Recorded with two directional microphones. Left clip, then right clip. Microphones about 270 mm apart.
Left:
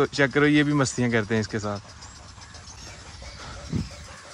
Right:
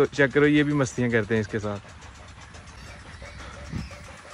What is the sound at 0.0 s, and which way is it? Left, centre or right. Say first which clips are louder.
Speech: right 1 dB; centre.